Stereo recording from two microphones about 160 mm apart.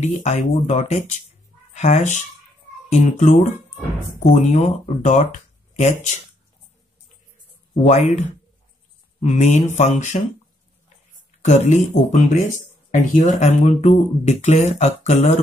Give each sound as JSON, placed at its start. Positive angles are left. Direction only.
{"t": 0.0, "sound": "speech", "side_deg": 45}
{"t": 7.7, "sound": "speech", "side_deg": 40}
{"t": 9.2, "sound": "speech", "side_deg": 45}
{"t": 11.4, "sound": "speech", "side_deg": 45}